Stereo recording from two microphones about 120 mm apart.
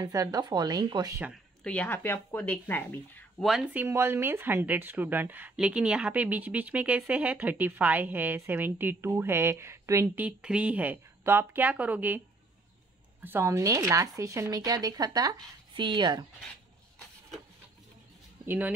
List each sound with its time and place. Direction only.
0.0 s speech: 30° right (ahead or behind)
1.3 s speech: 5° left (ahead or behind)
3.3 s speech: centre (ahead or behind)
3.7 s speech: 20° right (ahead or behind)
10.0 s speech: 10° right (ahead or behind)
13.2 s speech: 20° right (ahead or behind); by 16.3 s 40° right (ahead or behind)
18.4 s speech: 15° right (ahead or behind)